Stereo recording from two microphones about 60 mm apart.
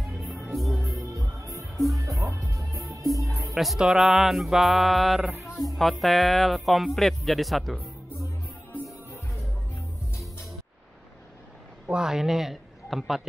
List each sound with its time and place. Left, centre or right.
0.2 s music: centre
1.0 s music: right
3.5 s speech: centre
11.9 s a man's voice: centre